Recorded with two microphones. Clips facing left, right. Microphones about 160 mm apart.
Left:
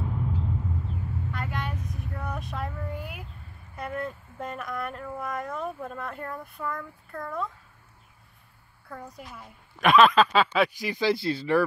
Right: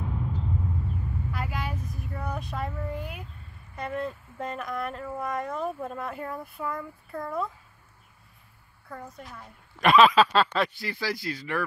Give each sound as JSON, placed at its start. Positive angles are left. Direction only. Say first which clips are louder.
{"t": 1.3, "sound": "child singing", "louder": "even", "side_deg": -5}
{"t": 3.7, "sound": "speech", "louder": "right 1 dB", "side_deg": 0}
{"t": 8.8, "sound": "speech", "louder": "even", "side_deg": 0}
{"t": 10.8, "sound": "speech", "louder": "left 6 dB", "side_deg": 20}